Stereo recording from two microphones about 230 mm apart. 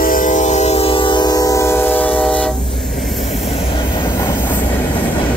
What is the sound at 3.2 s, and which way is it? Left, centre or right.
Train, left.